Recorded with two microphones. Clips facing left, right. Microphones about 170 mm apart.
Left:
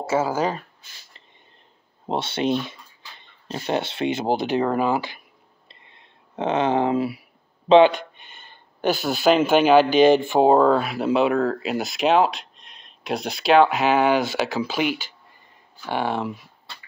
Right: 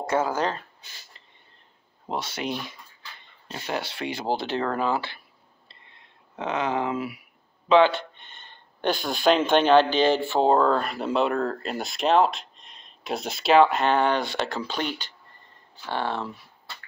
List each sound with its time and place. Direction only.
0.0 s speech: 5° left (ahead or behind)
2.0 s speech: 25° left (ahead or behind)
6.3 s speech: 25° left (ahead or behind)